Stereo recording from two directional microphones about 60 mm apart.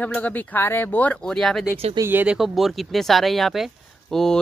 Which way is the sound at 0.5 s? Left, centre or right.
Left.